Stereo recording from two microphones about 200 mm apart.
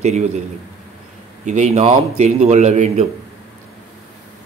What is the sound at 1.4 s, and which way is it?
Speech, 35° right (ahead or behind).